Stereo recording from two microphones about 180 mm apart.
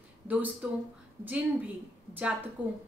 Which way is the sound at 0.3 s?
10° right (ahead or behind).